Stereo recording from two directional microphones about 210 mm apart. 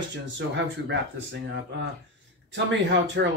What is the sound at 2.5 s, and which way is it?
Speech, 55° right (ahead or behind).